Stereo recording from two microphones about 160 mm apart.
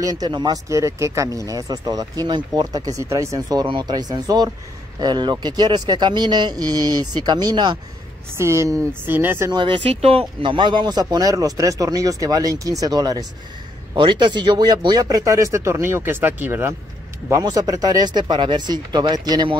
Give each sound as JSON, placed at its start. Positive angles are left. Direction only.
{"t": 0.0, "sound": "speech", "side_deg": -25}
{"t": 8.4, "sound": "speech", "side_deg": -15}
{"t": 9.5, "sound": "speech", "side_deg": -30}